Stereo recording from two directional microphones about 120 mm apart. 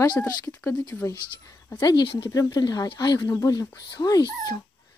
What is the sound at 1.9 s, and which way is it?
Speech, 40° left (ahead or behind).